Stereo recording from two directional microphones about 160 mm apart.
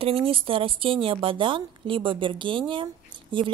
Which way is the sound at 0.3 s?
35° right (ahead or behind).